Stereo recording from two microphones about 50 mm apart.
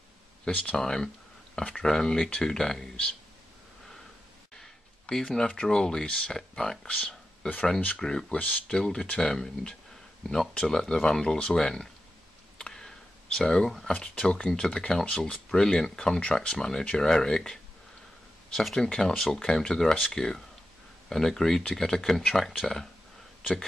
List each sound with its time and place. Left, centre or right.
0.7 s speech: centre
5.1 s speech: centre; by 7.6 s left
8.0 s speech: centre
8.3 s speech: left
12.5 s a sound: centre
13.9 s speech: centre